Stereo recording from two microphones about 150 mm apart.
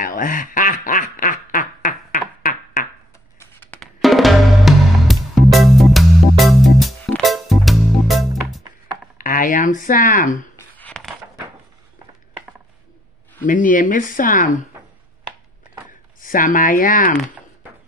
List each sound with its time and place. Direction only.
0.0 s quack: 65° left (ahead or behind)
3.8 s music: centre (ahead or behind)
9.2 s a sound: 65° left (ahead or behind)
10.9 s a sound: centre (ahead or behind)
13.4 s speech: 60° left (ahead or behind)
16.2 s speech: 65° left (ahead or behind)